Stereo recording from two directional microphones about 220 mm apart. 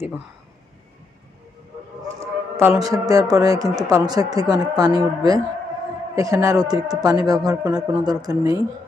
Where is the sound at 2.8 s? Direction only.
15° right (ahead or behind).